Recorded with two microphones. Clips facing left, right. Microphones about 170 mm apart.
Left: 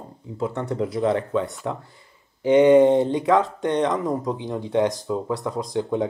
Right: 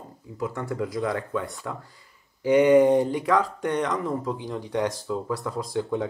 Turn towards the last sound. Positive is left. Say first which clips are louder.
# left 3 dB
turn(degrees=20)  # may be behind; listen again after turning